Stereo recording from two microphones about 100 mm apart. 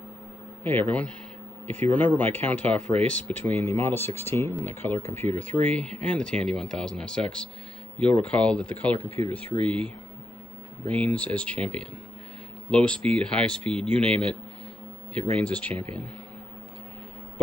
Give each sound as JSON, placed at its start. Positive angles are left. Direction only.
{"t": 0.7, "sound": "speech", "side_deg": 20}